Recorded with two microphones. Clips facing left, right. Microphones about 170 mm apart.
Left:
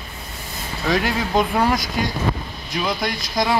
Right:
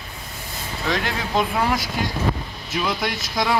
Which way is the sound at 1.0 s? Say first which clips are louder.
Left 3 dB; centre (ahead or behind).